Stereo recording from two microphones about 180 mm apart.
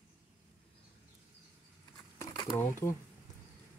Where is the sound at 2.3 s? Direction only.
20° left (ahead or behind).